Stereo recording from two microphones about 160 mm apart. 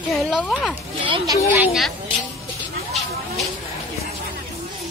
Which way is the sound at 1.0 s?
30° right (ahead or behind).